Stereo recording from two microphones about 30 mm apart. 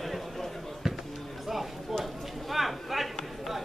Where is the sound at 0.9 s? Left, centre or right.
Centre.